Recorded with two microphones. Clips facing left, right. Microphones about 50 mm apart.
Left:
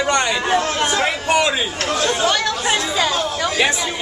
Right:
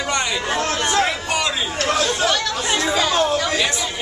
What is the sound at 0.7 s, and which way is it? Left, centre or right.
Chatter, centre.